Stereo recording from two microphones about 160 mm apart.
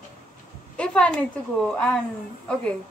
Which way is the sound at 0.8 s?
5° left (ahead or behind).